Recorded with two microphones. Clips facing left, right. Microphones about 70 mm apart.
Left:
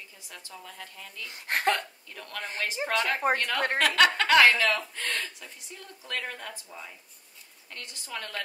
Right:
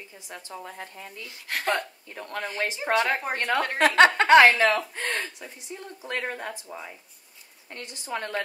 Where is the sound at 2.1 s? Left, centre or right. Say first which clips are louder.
Right 4 dB; right.